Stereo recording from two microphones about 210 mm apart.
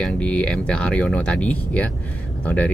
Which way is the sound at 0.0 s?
5° left (ahead or behind).